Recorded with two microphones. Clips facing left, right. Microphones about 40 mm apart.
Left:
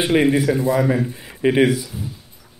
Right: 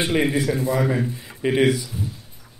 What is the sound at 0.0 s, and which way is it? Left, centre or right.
Speech, centre.